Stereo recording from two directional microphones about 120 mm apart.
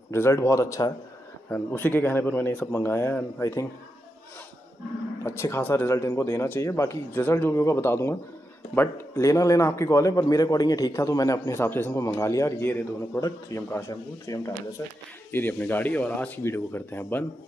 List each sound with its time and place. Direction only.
0.1 s a man's voice: 20° left (ahead or behind)
1.5 s speech: 15° left (ahead or behind)
5.2 s a man's voice: 20° left (ahead or behind)
15.3 s speech: 15° left (ahead or behind)